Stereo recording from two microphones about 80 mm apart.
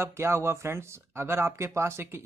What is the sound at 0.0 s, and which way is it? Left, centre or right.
Speech, right.